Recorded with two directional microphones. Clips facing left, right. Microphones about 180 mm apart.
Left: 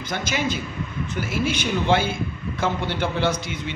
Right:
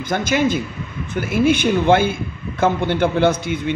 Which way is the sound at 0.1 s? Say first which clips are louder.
Right 8 dB; 50° right (ahead or behind).